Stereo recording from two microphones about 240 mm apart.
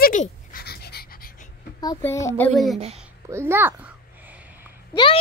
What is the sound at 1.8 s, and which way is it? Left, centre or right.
Speech, centre.